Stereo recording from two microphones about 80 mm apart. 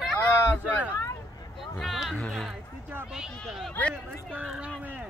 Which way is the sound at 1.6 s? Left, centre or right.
Centre.